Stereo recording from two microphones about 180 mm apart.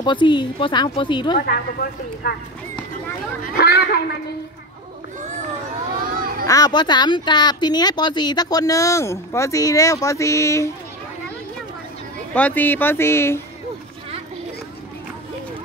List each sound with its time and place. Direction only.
0.0 s speech: 25° left (ahead or behind)
1.4 s speech: 60° left (ahead or behind)
3.5 s speech: 60° left (ahead or behind)
6.4 s speech: 20° left (ahead or behind)
12.4 s speech: 10° left (ahead or behind)